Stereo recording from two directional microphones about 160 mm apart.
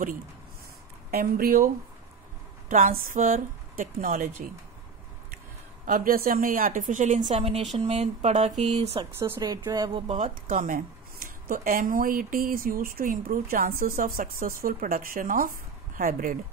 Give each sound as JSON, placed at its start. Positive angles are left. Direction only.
{"t": 1.1, "sound": "speech", "side_deg": -65}
{"t": 2.7, "sound": "speech", "side_deg": -55}
{"t": 5.9, "sound": "speech", "side_deg": -60}
{"t": 9.0, "sound": "speech", "side_deg": -30}
{"t": 10.0, "sound": "speech", "side_deg": -50}